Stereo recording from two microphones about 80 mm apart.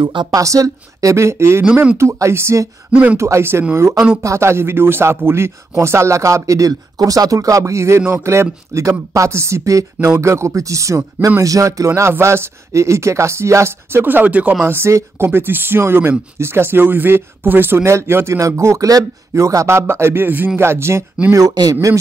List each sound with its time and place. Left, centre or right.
0.0 s speech: right
0.3 s speech: right
21.3 s speech: right